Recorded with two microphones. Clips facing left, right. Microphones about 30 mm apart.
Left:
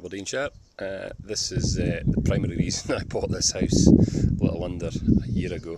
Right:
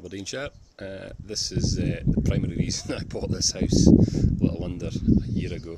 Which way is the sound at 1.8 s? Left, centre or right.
Centre.